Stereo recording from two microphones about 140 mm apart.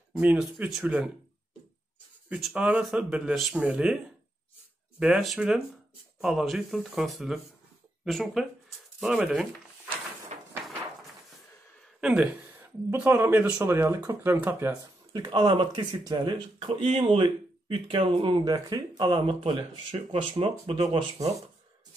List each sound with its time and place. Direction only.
0.1 s speech: 10° right (ahead or behind)
2.2 s speech: 10° right (ahead or behind)
9.0 s a sound: 5° right (ahead or behind)
10.3 s a sound: 55° right (ahead or behind)
12.0 s speech: 5° right (ahead or behind)
15.2 s speech: 35° right (ahead or behind)
16.8 s speech: 45° right (ahead or behind)